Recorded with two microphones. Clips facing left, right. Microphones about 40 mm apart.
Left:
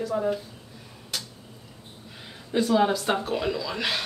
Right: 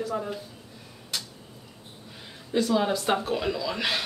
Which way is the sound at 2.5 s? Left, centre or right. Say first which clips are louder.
Left 2 dB; centre.